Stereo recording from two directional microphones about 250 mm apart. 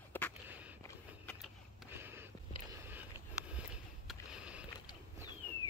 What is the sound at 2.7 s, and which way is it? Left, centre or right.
Vehicle, centre.